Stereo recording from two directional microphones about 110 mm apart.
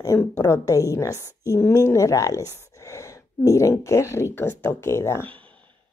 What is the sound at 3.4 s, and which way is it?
Speech, 25° left (ahead or behind).